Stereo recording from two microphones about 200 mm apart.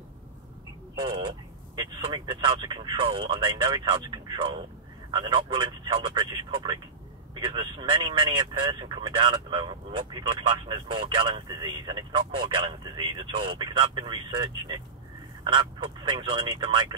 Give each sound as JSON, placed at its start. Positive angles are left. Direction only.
{"t": 1.8, "sound": "speech", "side_deg": -25}